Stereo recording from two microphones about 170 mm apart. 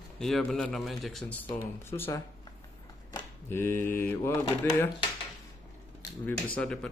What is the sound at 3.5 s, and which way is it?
Mantra, 10° left (ahead or behind).